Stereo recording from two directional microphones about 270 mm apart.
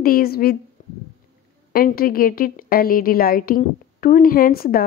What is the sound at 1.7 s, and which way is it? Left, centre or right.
A woman's voice, left.